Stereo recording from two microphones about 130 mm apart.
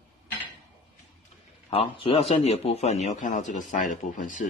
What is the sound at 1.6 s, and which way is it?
A man's voice, 45° left (ahead or behind).